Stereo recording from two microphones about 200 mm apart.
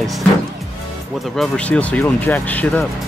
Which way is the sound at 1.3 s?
5° left (ahead or behind).